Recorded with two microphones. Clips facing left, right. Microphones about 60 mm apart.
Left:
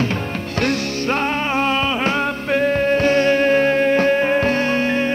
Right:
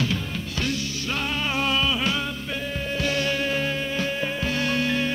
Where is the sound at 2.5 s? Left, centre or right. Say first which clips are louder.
Left 15 dB; left.